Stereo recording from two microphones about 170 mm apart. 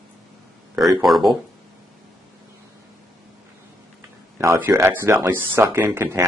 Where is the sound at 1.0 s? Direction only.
Centre (ahead or behind).